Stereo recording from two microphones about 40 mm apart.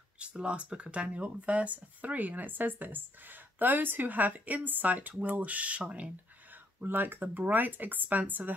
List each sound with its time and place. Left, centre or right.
0.2 s speech: right
6.5 s speech: right